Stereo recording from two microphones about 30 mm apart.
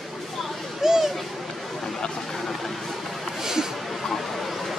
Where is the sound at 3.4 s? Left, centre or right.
Centre.